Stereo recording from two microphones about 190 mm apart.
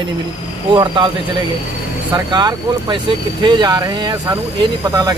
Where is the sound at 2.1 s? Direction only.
20° right (ahead or behind).